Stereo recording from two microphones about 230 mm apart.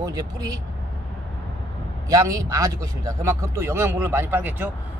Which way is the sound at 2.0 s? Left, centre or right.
Centre.